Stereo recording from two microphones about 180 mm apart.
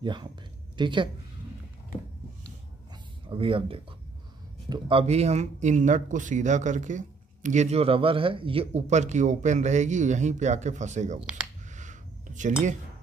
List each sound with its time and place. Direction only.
0.0 s speech: 25° right (ahead or behind)
3.3 s speech: 30° right (ahead or behind)
11.7 s dishes: 45° right (ahead or behind)